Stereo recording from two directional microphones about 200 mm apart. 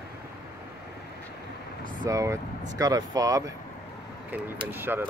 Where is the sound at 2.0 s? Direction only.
15° right (ahead or behind).